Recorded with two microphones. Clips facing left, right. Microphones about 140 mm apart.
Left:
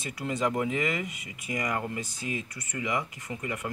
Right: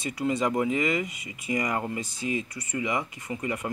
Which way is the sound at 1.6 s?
20° right (ahead or behind).